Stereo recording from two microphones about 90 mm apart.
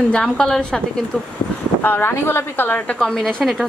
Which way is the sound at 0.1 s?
10° left (ahead or behind).